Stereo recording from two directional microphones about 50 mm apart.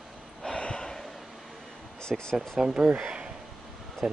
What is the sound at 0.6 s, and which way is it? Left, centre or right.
Gasp, centre.